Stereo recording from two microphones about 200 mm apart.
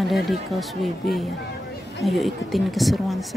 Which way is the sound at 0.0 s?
Centre (ahead or behind).